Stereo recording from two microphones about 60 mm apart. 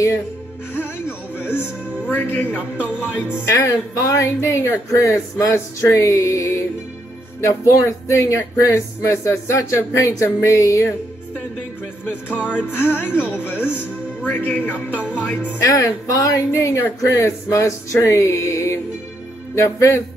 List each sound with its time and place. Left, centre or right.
2.0 s speech: left
2.5 s speech: centre
3.5 s speech: left
4.4 s speech: left
12.3 s speech: right
12.6 s speech: left
13.1 s speech: centre
13.7 s speech: left
15.0 s speech: centre
15.7 s speech: left